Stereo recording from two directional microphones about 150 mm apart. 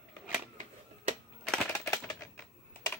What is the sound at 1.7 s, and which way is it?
Typing, 20° left (ahead or behind).